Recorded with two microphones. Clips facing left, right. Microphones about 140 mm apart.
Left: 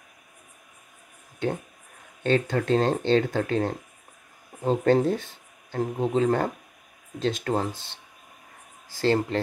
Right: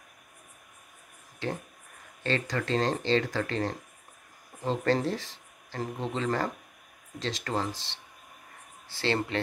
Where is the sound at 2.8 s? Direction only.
55° left (ahead or behind).